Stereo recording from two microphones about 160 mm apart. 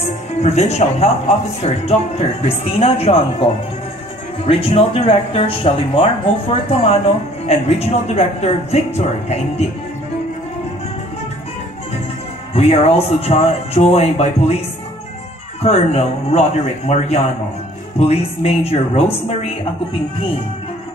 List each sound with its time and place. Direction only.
0.4 s speech: 45° left (ahead or behind)
4.5 s speech: 35° left (ahead or behind)
12.5 s speech: 40° left (ahead or behind)
15.6 s speech: 40° left (ahead or behind)